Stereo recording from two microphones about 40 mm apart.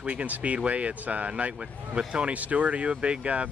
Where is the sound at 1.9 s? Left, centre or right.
Right.